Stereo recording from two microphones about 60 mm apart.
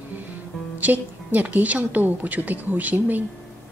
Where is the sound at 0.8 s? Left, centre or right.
Right.